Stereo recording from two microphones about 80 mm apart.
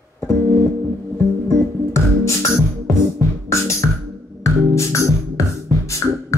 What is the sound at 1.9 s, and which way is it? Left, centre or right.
Music, left.